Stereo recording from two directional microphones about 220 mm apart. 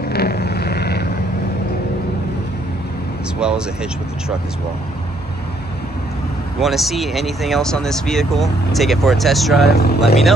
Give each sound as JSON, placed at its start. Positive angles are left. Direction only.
{"t": 0.1, "sound": "vehicle", "side_deg": 45}
{"t": 3.3, "sound": "speech", "side_deg": -5}
{"t": 6.6, "sound": "speech", "side_deg": 0}
{"t": 9.7, "sound": "speech", "side_deg": 45}